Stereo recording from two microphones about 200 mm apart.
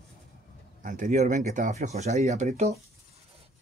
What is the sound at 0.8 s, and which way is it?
Speech, 40° right (ahead or behind).